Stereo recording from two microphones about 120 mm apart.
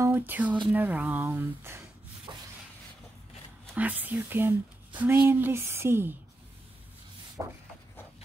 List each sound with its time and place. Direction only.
0.0 s speech: 15° right (ahead or behind)
2.3 s rub: 40° right (ahead or behind)
3.7 s speech: 15° right (ahead or behind)
7.4 s a sound: 25° right (ahead or behind)